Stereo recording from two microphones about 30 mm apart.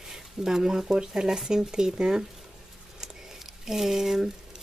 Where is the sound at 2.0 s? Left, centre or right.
Right.